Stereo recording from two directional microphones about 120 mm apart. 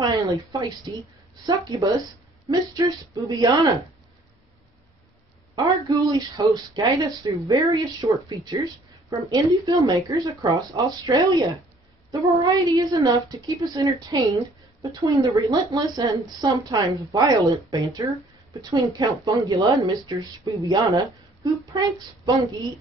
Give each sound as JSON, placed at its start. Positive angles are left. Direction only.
{"t": 0.0, "sound": "a woman's voice", "side_deg": -30}
{"t": 5.9, "sound": "a woman's voice", "side_deg": -35}